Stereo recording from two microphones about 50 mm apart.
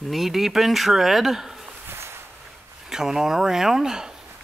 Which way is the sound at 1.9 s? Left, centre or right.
Right.